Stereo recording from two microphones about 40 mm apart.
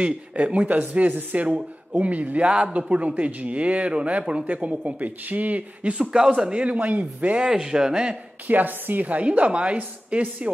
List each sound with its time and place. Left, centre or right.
0.0 s speech: right
0.7 s speech: right
2.4 s speech: right
5.9 s speech: right
7.3 s speech: centre
8.5 s speech: right